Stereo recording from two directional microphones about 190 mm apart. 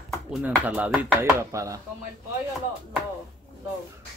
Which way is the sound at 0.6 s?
10° right (ahead or behind).